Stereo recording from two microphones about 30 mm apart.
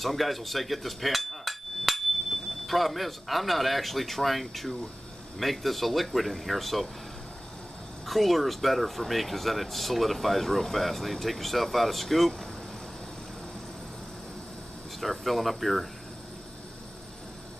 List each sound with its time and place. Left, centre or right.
0.0 s speech: centre
8.1 s speech: centre
15.0 s speech: centre